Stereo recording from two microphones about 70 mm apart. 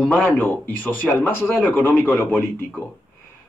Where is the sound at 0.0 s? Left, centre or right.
Left.